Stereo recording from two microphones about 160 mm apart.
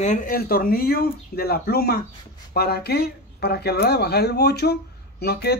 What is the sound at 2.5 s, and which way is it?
Speech, 90° left.